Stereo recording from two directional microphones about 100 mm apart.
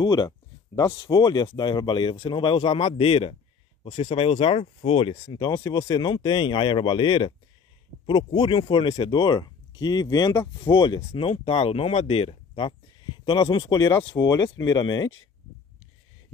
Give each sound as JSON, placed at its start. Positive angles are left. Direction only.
{"t": 0.0, "sound": "speech", "side_deg": 40}
{"t": 5.1, "sound": "speech", "side_deg": 40}
{"t": 10.7, "sound": "speech", "side_deg": 50}
{"t": 11.1, "sound": "speech", "side_deg": 65}